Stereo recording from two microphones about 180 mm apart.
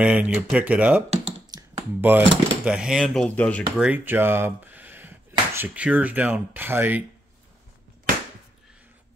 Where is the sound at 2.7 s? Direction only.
5° right (ahead or behind).